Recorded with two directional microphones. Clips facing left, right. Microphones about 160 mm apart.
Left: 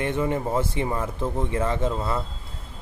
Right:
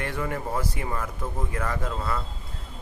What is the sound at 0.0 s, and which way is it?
Speech, 20° left (ahead or behind).